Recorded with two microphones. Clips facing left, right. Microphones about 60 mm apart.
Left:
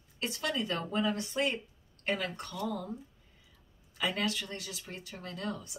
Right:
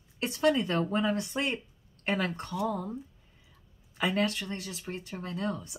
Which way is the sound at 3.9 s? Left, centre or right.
Right.